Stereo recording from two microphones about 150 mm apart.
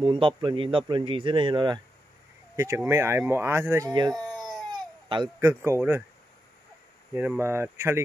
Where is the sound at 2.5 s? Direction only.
20° right (ahead or behind).